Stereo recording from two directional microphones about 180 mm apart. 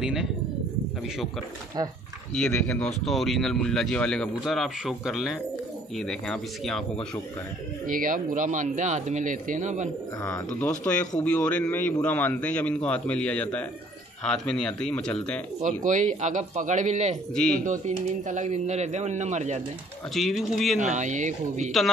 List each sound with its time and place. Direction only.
0.0 s speech: 5° right (ahead or behind)
2.3 s speech: 5° left (ahead or behind)
7.8 s speech: 50° right (ahead or behind)
10.2 s speech: 10° left (ahead or behind)
15.6 s speech: 45° right (ahead or behind)
17.3 s speech: 5° left (ahead or behind)
17.6 s speech: 45° right (ahead or behind)
20.2 s speech: centre (ahead or behind)
20.8 s speech: 40° right (ahead or behind)